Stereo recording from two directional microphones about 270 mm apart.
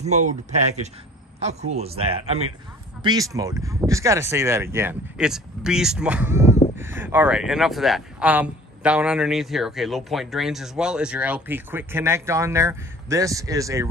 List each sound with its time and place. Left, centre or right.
0.0 s speech: right